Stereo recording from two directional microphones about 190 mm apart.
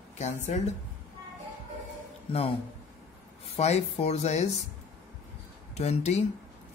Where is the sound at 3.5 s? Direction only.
35° left (ahead or behind).